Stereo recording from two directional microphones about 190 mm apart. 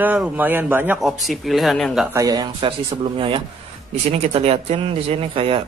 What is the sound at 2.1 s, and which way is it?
Speech, 20° right (ahead or behind).